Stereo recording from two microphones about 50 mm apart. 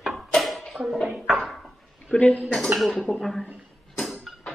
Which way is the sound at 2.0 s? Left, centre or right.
Left.